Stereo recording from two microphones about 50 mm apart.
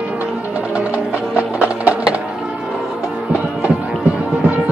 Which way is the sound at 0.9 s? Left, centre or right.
Right.